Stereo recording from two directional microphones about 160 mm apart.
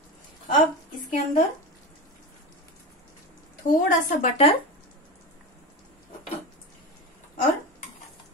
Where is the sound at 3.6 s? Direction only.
55° left (ahead or behind).